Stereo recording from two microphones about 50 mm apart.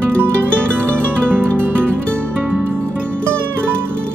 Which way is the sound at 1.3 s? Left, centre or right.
Right.